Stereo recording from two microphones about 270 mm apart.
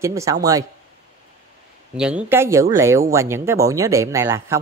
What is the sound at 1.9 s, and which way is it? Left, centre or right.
Speech, centre.